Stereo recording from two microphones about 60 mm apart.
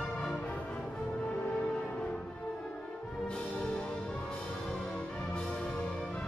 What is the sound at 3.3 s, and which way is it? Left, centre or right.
Music, centre.